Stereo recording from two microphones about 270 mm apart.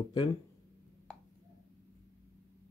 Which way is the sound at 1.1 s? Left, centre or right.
Centre.